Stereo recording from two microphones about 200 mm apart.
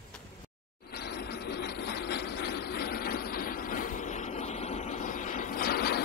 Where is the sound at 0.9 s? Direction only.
55° left (ahead or behind).